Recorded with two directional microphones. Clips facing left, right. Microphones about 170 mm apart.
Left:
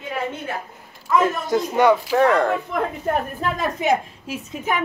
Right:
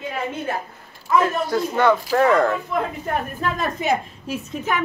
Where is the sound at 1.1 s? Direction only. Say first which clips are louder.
Even; 15° left (ahead or behind).